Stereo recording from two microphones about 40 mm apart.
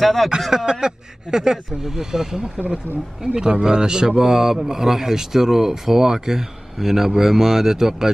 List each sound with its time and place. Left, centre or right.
0.0 s speech: centre
0.7 s a man's voice: centre